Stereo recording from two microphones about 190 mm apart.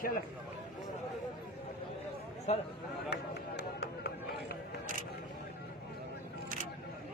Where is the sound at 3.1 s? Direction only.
60° left (ahead or behind).